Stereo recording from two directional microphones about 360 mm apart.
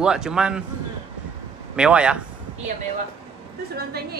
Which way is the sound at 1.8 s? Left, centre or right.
Centre.